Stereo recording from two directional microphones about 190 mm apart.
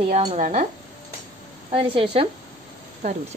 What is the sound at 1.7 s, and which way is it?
Speech, 30° right (ahead or behind).